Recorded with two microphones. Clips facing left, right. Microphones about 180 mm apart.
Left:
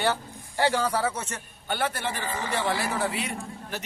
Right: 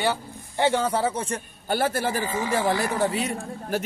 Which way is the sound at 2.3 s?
10° right (ahead or behind).